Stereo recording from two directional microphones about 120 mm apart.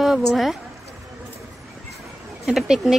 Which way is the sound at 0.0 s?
Centre (ahead or behind).